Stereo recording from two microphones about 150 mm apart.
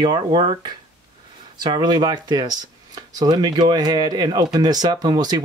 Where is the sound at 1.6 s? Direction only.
30° right (ahead or behind).